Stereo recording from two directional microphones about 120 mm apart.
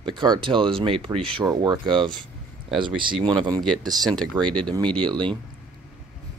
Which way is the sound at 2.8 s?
45° right (ahead or behind).